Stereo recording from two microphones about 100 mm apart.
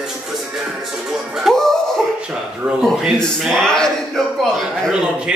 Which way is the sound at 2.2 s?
10° right (ahead or behind).